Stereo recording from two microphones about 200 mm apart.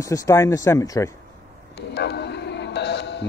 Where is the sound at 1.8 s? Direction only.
55° left (ahead or behind).